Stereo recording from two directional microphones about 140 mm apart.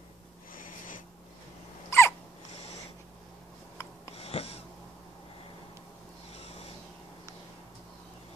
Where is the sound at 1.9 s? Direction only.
20° left (ahead or behind).